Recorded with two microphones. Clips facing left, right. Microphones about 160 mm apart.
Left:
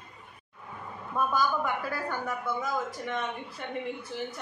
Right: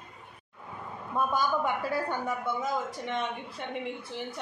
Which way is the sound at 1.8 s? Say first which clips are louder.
Right 2 dB; 25° right (ahead or behind).